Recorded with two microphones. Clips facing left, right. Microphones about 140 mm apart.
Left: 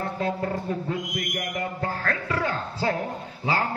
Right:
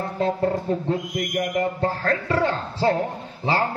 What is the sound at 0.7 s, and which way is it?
Speech, 30° right (ahead or behind).